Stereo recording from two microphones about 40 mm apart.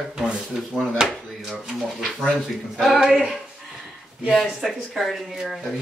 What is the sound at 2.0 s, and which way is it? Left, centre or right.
Speech, centre.